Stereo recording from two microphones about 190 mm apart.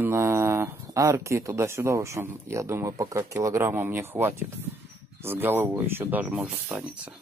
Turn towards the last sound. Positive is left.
turn(degrees=-10)  # may be behind; listen again after turning